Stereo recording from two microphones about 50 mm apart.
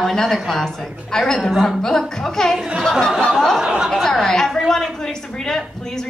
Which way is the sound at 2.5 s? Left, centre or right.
Centre.